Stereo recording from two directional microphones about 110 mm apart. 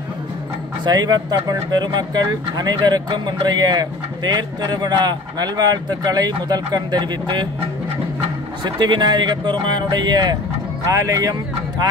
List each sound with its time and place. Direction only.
0.8 s speech: 40° right (ahead or behind)
8.6 s speech: 40° right (ahead or behind)